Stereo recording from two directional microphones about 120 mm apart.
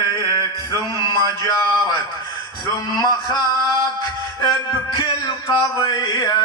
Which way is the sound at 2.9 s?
35° left (ahead or behind).